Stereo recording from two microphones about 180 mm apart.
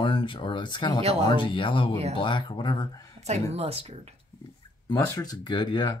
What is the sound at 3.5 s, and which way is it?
Speech, 35° right (ahead or behind).